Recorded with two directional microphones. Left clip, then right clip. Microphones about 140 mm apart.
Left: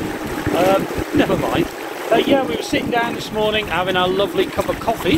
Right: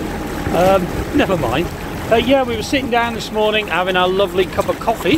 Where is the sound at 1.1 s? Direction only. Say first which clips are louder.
Right 1 dB; 10° right (ahead or behind).